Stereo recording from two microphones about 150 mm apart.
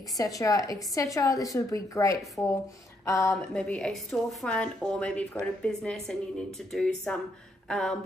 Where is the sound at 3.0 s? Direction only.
20° left (ahead or behind).